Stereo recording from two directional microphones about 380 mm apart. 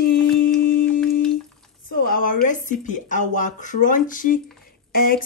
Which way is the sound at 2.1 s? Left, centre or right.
Left.